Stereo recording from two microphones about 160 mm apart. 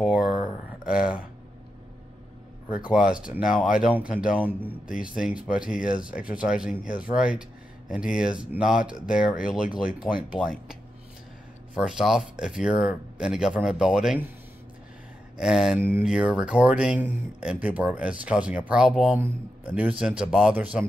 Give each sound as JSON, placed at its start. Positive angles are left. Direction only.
{"t": 0.0, "sound": "a sound", "side_deg": -5}
{"t": 2.7, "sound": "speech", "side_deg": -5}
{"t": 5.8, "sound": "speech", "side_deg": 60}
{"t": 6.3, "sound": "speech", "side_deg": -5}
{"t": 11.7, "sound": "speech", "side_deg": -5}
{"t": 15.3, "sound": "speech", "side_deg": -5}